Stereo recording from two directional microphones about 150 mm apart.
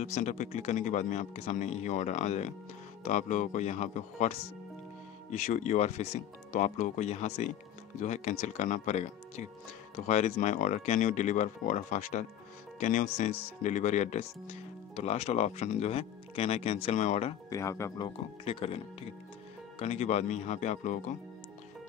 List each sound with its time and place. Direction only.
0.0 s speech: 55° left (ahead or behind)
17.5 s speech: 20° left (ahead or behind)
18.0 s speech: 35° left (ahead or behind); by 21.2 s 55° left (ahead or behind)